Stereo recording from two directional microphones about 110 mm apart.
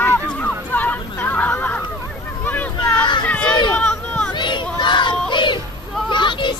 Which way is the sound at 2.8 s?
40° left (ahead or behind).